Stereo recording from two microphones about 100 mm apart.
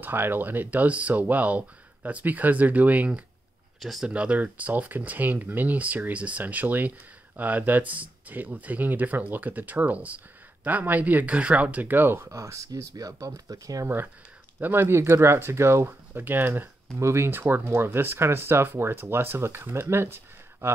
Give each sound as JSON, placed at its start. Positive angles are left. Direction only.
{"t": 0.0, "sound": "speech", "side_deg": -20}
{"t": 3.8, "sound": "speech", "side_deg": 0}
{"t": 4.1, "sound": "speech", "side_deg": -15}
{"t": 13.8, "sound": "speech", "side_deg": -20}